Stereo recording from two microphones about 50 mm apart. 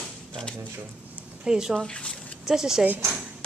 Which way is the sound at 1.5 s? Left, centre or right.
Centre.